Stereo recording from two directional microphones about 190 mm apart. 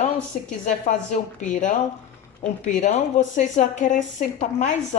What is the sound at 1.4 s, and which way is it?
A woman's voice, 40° left (ahead or behind).